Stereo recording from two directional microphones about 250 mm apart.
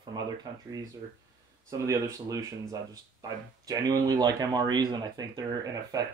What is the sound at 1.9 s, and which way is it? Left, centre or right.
Speech, centre.